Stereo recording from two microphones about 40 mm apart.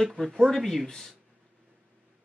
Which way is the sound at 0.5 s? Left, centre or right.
Centre.